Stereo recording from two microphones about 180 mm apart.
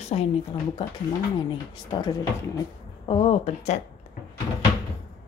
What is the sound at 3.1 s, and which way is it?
Speech, 35° left (ahead or behind).